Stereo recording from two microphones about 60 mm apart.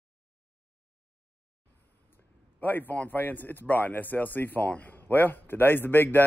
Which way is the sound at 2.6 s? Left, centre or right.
Left.